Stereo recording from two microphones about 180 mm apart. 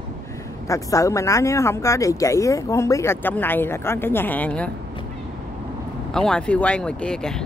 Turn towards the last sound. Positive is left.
turn(degrees=5)  # may be behind; listen again after turning